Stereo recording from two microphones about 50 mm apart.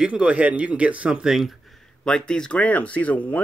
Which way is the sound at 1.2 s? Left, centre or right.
Centre.